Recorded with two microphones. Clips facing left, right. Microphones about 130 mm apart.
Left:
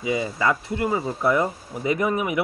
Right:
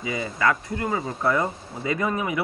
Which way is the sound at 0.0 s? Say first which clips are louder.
Left 1 dB; 15° left (ahead or behind).